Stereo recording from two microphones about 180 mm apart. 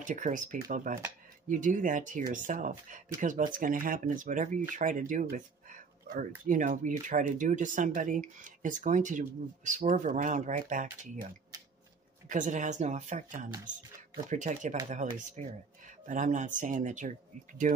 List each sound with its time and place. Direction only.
0.0 s speech: 45° right (ahead or behind)
12.3 s speech: 45° right (ahead or behind)